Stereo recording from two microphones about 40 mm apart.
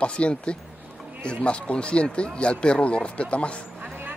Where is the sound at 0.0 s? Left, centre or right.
Left.